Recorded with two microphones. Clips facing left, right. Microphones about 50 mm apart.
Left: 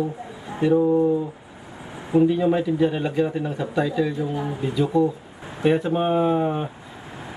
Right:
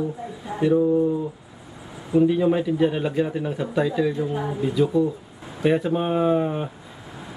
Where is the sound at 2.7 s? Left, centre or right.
Centre.